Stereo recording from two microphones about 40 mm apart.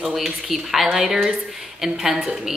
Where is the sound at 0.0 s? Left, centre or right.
Centre.